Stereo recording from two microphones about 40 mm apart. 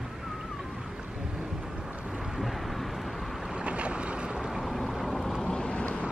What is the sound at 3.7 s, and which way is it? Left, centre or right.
Boat, right.